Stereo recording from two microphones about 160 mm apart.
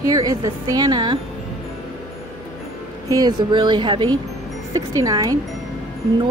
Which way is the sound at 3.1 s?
25° right (ahead or behind).